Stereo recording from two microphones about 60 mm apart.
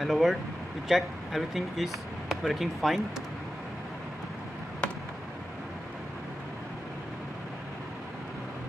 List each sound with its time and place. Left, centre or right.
0.0 s speech: centre